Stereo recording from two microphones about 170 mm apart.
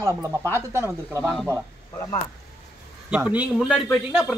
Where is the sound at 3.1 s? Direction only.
10° right (ahead or behind).